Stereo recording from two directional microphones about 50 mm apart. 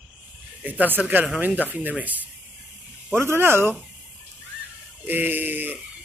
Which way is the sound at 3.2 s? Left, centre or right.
Right.